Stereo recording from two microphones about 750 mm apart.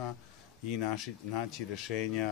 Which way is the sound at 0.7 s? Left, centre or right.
Left.